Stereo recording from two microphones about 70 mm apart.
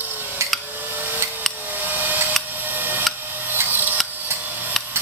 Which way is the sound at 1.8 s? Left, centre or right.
Right.